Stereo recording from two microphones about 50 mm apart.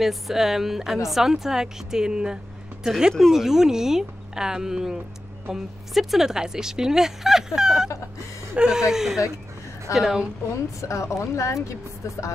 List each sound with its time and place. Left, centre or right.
0.0 s speech: centre
10.8 s speech: left